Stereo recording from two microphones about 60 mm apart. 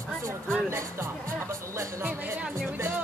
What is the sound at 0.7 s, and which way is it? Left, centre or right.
Speech, right.